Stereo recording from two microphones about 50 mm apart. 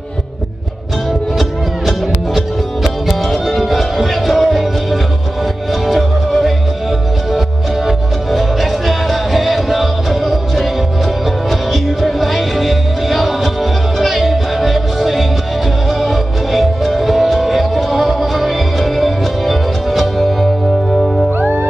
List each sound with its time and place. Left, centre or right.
1.4 s music: centre
11.7 s music: centre
20.9 s music: centre
21.4 s music: right